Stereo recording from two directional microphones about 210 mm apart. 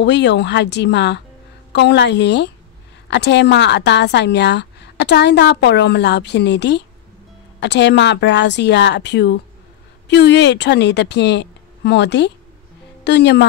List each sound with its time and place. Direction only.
0.0 s a woman's voice: 55° left (ahead or behind)